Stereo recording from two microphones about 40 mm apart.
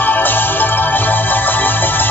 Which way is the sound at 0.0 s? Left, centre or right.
Left.